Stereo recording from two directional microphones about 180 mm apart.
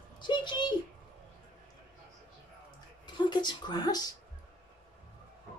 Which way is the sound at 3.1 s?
25° left (ahead or behind).